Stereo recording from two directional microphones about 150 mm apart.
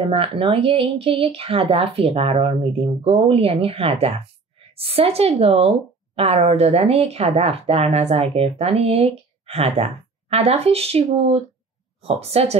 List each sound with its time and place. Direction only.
0.1 s speech: 40° right (ahead or behind)